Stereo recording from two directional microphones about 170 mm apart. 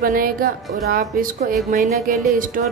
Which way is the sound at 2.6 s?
55° right (ahead or behind).